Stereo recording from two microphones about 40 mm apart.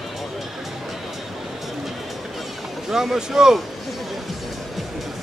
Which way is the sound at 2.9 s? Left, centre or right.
Centre.